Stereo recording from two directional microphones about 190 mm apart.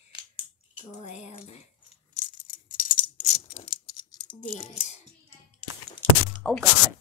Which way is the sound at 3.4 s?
30° left (ahead or behind).